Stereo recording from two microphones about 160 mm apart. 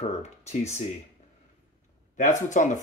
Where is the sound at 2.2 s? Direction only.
50° left (ahead or behind).